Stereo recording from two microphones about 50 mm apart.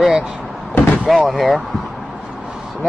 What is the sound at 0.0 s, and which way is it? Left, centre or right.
Door, centre.